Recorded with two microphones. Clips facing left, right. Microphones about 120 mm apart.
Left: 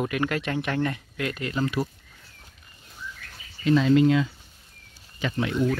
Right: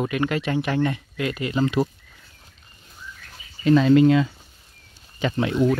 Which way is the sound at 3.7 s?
55° right (ahead or behind).